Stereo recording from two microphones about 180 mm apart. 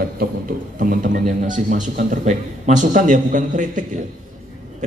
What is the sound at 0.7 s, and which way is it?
A man's voice, 50° right (ahead or behind).